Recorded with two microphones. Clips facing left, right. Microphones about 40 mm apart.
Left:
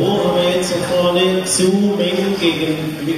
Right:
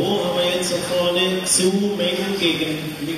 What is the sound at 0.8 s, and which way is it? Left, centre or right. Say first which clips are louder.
Speech: left 5 dB; centre.